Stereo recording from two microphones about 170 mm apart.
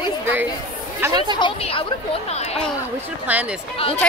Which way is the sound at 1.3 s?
30° left (ahead or behind).